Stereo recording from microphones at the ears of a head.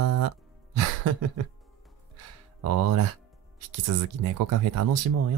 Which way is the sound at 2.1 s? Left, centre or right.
Right.